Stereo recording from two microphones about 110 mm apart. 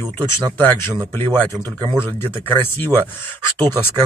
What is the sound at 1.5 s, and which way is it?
Speech, 35° right (ahead or behind).